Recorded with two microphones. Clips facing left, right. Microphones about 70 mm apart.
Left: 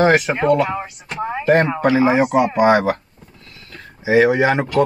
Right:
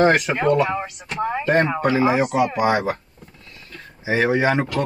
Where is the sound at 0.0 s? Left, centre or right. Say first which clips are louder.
Left 2 dB; centre.